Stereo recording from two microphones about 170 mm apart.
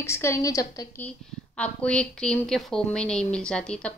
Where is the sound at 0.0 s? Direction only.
15° left (ahead or behind).